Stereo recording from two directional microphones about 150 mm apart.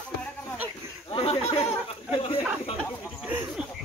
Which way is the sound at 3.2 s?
10° right (ahead or behind).